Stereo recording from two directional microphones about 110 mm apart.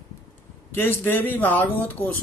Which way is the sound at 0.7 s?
20° left (ahead or behind).